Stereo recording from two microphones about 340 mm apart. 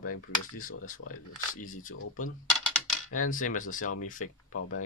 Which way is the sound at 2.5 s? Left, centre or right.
Centre.